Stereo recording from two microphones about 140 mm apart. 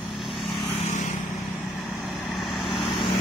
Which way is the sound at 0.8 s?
60° left (ahead or behind).